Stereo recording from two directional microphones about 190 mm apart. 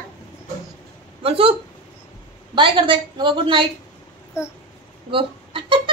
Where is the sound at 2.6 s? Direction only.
25° right (ahead or behind).